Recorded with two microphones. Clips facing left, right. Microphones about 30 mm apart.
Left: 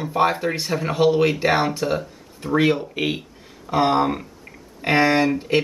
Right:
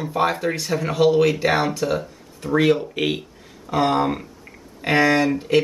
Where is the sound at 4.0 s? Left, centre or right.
Centre.